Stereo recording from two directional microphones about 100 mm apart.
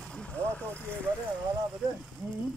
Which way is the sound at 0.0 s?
10° left (ahead or behind).